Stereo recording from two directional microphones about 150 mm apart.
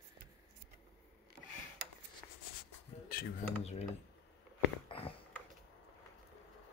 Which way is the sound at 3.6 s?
45° left (ahead or behind).